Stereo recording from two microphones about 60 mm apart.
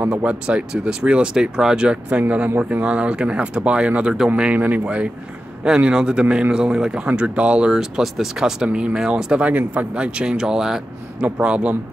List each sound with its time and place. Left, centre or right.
0.2 s speech: centre
4.3 s speech: right
9.4 s speech: right; by 10.8 s centre
11.1 s speech: right